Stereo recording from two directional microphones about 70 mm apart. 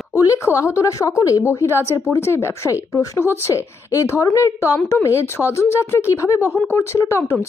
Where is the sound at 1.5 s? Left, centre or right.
Left.